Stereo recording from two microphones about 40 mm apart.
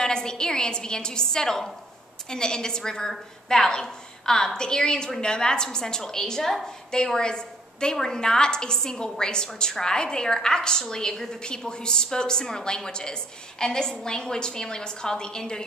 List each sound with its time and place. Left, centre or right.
0.0 s a woman's voice: centre